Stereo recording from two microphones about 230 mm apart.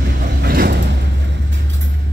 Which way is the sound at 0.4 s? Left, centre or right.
Right.